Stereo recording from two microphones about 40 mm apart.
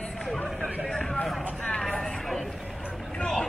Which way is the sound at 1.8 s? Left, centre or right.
Centre.